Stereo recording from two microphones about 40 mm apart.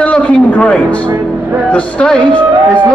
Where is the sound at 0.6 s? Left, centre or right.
Left.